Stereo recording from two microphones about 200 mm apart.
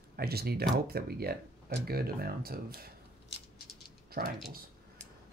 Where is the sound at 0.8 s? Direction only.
50° right (ahead or behind).